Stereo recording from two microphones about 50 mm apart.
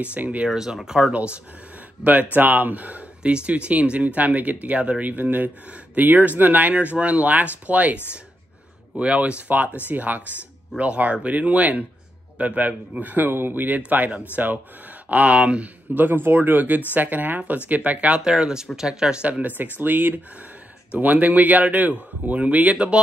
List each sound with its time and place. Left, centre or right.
0.0 s speech: right
0.5 s speech: centre
1.1 s speech: right
2.3 s speech: right
3.2 s speech: right
5.1 s speech: right
15.9 s speech: right; by 19.2 s centre
19.2 s speech: right